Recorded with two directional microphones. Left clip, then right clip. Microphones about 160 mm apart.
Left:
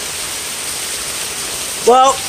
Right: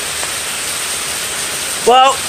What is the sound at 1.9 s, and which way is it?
Speech, 20° left (ahead or behind).